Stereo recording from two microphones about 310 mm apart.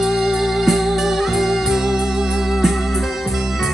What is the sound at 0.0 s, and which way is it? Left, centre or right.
Music, centre.